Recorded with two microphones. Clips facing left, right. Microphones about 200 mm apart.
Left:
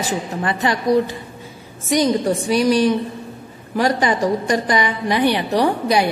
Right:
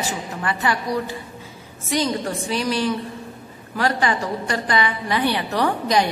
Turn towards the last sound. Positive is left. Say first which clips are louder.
# left 3 dB
turn(degrees=10)  # may be behind; listen again after turning